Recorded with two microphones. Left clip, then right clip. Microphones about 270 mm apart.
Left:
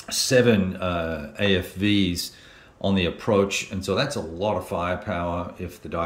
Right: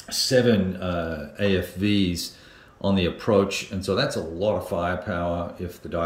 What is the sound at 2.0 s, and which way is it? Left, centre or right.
Speech, left.